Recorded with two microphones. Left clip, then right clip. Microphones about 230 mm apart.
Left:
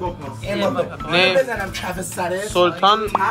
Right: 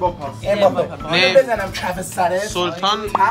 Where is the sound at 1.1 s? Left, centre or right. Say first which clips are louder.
Right 3 dB; centre.